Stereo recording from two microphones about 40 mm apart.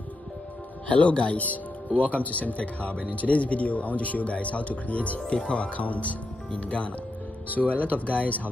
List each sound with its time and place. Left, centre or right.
0.8 s speech: left